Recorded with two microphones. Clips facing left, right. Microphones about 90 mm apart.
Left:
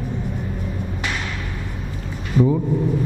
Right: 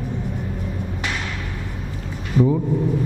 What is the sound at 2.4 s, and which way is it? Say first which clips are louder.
Speech: even; 25° left (ahead or behind).